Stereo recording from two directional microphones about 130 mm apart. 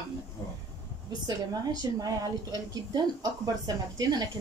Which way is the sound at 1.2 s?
30° right (ahead or behind).